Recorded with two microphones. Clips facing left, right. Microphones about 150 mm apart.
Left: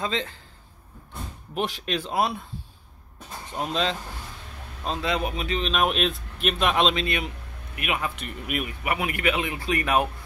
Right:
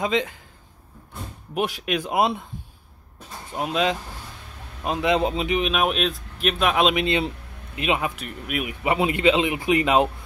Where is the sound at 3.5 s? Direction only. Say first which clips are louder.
Right 3 dB; 5° right (ahead or behind).